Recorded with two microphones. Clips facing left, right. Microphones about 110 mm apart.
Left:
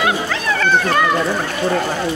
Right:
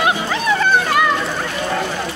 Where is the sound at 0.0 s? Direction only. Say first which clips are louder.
Right 1 dB; 20° right (ahead or behind).